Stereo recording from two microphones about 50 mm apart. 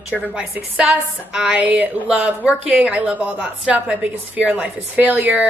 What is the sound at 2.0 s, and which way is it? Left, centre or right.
A woman's voice, centre.